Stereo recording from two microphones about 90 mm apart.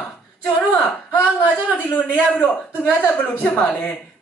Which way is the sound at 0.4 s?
15° left (ahead or behind).